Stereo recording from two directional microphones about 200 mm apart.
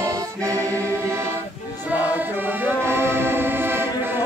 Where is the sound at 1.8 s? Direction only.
10° right (ahead or behind).